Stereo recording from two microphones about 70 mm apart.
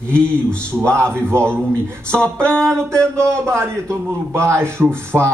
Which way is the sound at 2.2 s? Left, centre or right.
Centre.